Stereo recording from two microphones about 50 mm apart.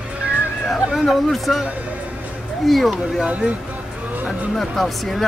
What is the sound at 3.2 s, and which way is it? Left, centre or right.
Speech, right.